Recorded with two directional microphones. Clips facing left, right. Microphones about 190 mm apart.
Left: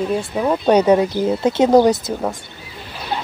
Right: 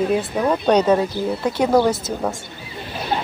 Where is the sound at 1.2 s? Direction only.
20° left (ahead or behind).